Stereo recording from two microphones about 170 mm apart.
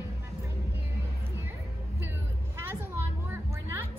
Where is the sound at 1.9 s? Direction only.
15° right (ahead or behind).